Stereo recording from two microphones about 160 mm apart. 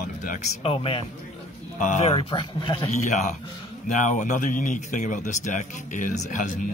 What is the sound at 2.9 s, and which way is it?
Speech, 45° left (ahead or behind).